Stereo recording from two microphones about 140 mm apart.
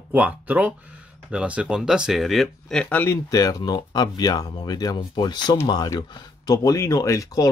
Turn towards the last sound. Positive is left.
turn(degrees=25)  # may be behind; listen again after turning